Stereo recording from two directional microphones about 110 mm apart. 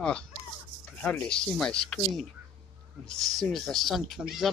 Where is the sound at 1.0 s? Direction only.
15° left (ahead or behind).